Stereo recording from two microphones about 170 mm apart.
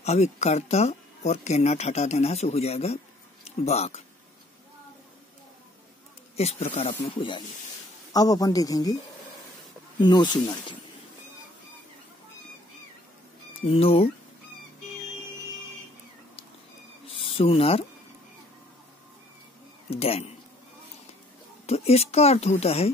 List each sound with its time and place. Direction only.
0.0 s speech: 40° left (ahead or behind)
6.3 s speech: 40° left (ahead or behind); by 8.9 s 20° left (ahead or behind)
9.9 s speech: 25° left (ahead or behind)
13.7 s speech: 35° left (ahead or behind)
17.1 s speech: 35° left (ahead or behind)
19.9 s speech: 35° left (ahead or behind)
21.6 s speech: 35° left (ahead or behind)